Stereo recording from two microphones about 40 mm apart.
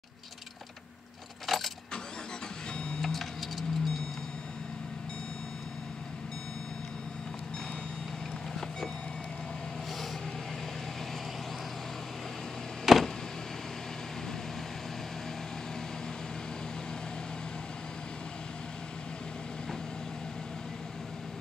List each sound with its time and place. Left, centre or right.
1.5 s vehicle: centre
2.8 s vehicle: centre
3.1 s a sound: centre
12.9 s vehicle: centre